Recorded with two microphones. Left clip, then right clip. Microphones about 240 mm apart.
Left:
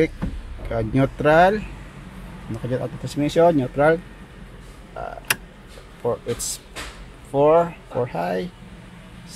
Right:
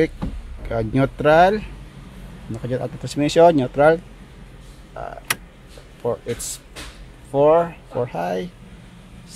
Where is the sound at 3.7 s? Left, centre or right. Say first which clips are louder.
Right 3 dB; centre.